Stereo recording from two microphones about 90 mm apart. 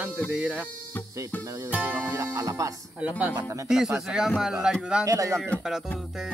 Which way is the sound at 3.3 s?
35° right (ahead or behind).